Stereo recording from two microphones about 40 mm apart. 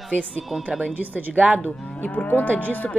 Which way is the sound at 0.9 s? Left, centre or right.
Right.